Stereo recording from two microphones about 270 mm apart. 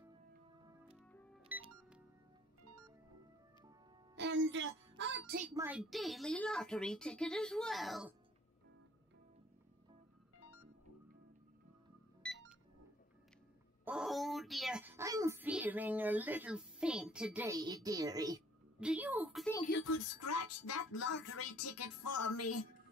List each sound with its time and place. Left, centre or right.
0.6 s music: centre
1.1 s music: centre
4.1 s music: right
5.5 s speech: centre
12.2 s music: centre
13.8 s a woman's voice: centre
19.7 s speech: left
21.3 s speech: left